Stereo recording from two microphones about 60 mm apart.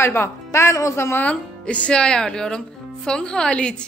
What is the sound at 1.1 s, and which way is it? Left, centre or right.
A woman's voice, left.